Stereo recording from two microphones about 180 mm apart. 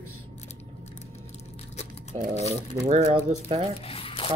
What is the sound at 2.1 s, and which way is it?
Speech, 40° right (ahead or behind).